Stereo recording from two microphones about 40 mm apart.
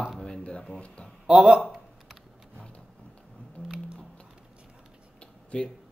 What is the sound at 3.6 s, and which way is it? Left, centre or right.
Speech, left.